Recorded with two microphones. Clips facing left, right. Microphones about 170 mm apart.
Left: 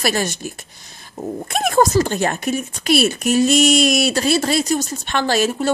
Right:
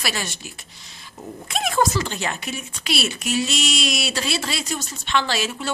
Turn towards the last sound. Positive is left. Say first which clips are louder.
# left 8 dB
turn(degrees=45)  # may be behind; listen again after turning